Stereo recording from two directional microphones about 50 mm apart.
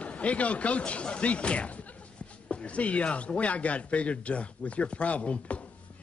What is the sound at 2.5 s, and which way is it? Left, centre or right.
Speech, left.